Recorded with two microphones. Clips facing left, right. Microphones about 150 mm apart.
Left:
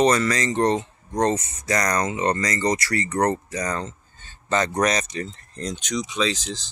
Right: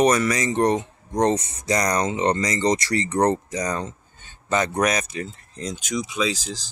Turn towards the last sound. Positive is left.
turn(degrees=-5)  # may be behind; listen again after turning